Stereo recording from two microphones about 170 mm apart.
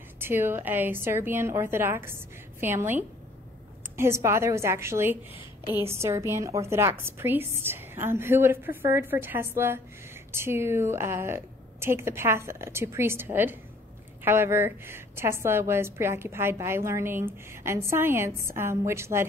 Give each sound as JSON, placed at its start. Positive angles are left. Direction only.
{"t": 0.2, "sound": "a woman's voice", "side_deg": -15}